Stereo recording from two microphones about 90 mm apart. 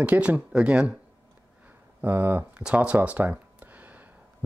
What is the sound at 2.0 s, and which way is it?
Speech, 25° right (ahead or behind).